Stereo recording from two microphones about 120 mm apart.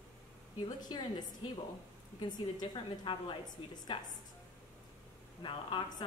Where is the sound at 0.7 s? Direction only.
35° left (ahead or behind).